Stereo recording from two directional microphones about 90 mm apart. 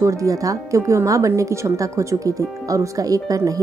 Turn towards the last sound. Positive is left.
turn(degrees=-40)  # may be behind; listen again after turning